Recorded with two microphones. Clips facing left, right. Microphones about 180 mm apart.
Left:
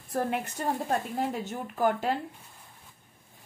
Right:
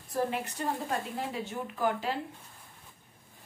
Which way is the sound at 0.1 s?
55° left (ahead or behind).